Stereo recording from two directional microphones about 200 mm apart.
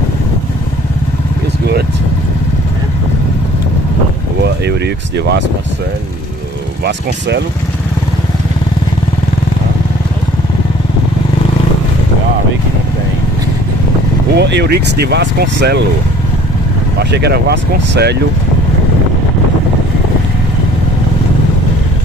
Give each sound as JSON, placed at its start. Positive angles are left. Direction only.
{"t": 4.4, "sound": "speech", "side_deg": -55}
{"t": 6.8, "sound": "speech", "side_deg": -60}
{"t": 14.3, "sound": "speech", "side_deg": -55}
{"t": 17.0, "sound": "speech", "side_deg": -55}